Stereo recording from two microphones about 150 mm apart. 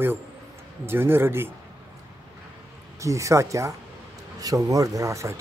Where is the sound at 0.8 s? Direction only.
15° right (ahead or behind).